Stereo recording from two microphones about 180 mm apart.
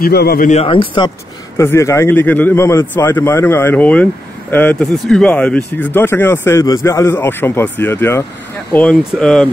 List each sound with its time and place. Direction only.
0.0 s speech: 60° left (ahead or behind)
0.5 s speech: 30° left (ahead or behind)
1.6 s speech: 15° left (ahead or behind)